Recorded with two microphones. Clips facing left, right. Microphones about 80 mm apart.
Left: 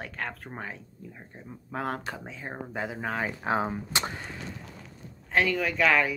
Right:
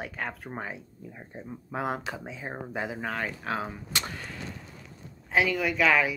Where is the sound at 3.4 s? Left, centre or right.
Left.